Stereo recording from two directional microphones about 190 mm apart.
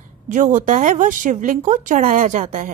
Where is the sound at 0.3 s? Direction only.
40° right (ahead or behind).